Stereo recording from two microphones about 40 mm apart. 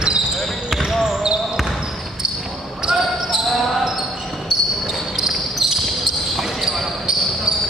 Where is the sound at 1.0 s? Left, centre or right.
Centre.